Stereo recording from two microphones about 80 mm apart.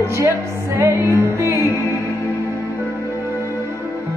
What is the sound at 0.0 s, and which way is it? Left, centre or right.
Music, right.